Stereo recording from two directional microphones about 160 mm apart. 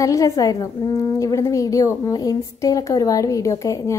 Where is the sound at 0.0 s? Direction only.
20° left (ahead or behind).